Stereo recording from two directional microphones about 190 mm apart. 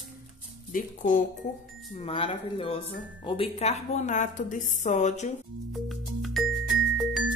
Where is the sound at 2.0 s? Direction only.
30° left (ahead or behind).